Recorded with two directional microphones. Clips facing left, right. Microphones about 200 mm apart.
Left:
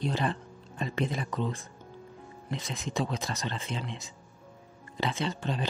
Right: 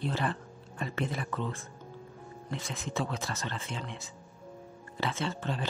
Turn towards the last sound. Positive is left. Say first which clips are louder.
# left 2 dB
turn(degrees=15)  # may be behind; listen again after turning